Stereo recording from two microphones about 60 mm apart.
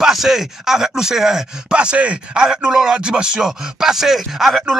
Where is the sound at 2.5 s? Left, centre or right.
Centre.